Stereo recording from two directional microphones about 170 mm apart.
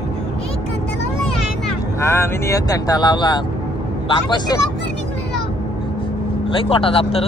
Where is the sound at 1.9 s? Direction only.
15° left (ahead or behind).